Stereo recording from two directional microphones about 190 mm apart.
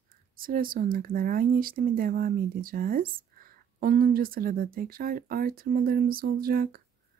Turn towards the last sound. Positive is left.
turn(degrees=-50)  # may be behind; listen again after turning